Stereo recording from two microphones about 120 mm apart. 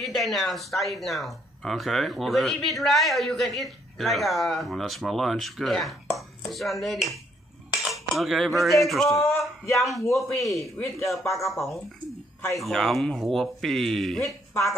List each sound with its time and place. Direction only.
0.0 s speech: centre (ahead or behind)
10.6 s speech: 25° left (ahead or behind)
11.3 s speech: centre (ahead or behind)
14.5 s speech: 25° left (ahead or behind)